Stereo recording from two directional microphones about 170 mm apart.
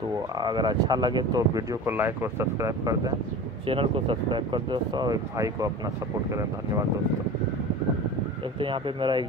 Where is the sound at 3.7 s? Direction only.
30° right (ahead or behind).